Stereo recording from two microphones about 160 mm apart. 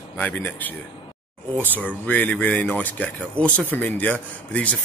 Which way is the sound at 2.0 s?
10° left (ahead or behind).